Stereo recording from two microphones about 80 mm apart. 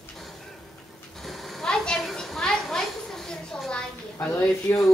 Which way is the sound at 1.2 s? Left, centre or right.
Centre.